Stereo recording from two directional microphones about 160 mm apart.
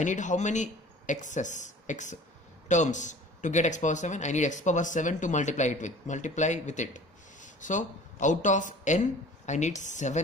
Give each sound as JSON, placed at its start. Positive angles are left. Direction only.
{"t": 0.0, "sound": "a man's voice", "side_deg": 50}